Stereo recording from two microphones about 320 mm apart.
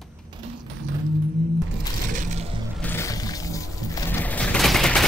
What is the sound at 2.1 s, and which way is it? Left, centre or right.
Crushing, right.